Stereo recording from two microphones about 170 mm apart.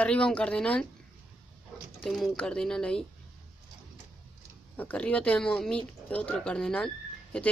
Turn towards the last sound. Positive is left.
turn(degrees=5)  # may be behind; listen again after turning